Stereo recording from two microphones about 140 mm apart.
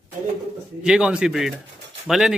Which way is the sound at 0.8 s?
5° right (ahead or behind).